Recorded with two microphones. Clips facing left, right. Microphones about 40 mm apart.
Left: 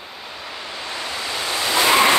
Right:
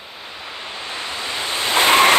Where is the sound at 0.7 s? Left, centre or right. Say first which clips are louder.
Even; right.